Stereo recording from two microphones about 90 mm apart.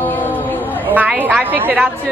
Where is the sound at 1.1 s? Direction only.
20° right (ahead or behind).